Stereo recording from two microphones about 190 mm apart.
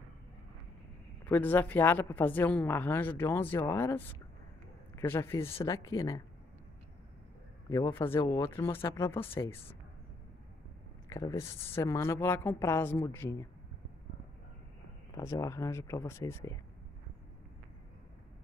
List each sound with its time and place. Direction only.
1.2 s a woman's voice: 10° left (ahead or behind)
7.7 s a woman's voice: 15° left (ahead or behind)
11.1 s a woman's voice: 15° left (ahead or behind)
15.1 s a woman's voice: 15° left (ahead or behind)